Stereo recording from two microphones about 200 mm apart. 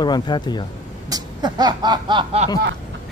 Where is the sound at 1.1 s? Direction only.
20° right (ahead or behind).